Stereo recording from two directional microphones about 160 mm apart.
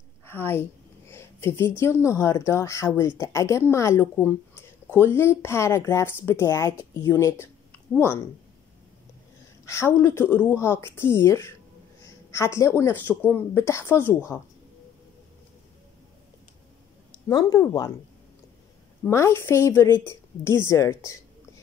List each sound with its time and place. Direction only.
0.3 s a woman's voice: 15° left (ahead or behind)
9.7 s speech: 15° left (ahead or behind)
17.3 s speech: 20° left (ahead or behind)
19.0 s speech: 15° left (ahead or behind)